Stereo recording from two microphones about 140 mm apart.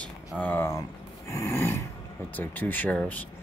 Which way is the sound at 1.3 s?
20° left (ahead or behind).